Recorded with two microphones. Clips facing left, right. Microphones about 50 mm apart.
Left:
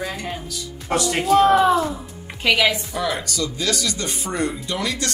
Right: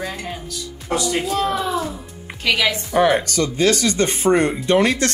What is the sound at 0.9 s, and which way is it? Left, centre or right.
Speech, left.